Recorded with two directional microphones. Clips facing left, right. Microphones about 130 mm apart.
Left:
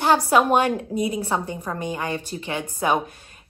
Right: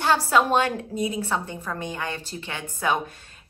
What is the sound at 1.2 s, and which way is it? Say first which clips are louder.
A woman's voice: left 3 dB; 20° left (ahead or behind).